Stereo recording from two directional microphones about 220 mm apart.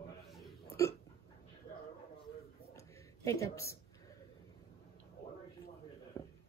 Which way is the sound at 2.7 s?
15° left (ahead or behind).